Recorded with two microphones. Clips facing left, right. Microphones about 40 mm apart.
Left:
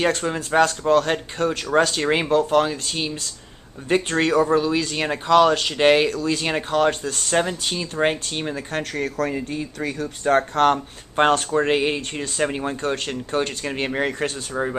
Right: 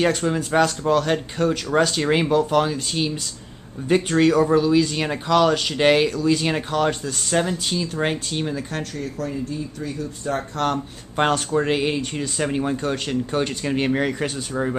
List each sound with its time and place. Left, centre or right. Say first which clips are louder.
0.0 s speech: right 1 dB; centre
8.9 s speech: left 7 dB; left
11.5 s speech: left 1 dB; centre